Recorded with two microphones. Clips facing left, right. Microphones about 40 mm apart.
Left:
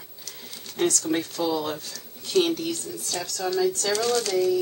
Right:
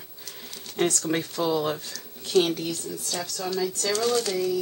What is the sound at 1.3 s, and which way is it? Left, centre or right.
Speech, right.